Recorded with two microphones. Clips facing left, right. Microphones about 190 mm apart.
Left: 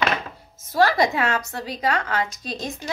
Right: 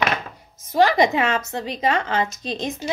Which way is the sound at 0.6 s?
20° right (ahead or behind).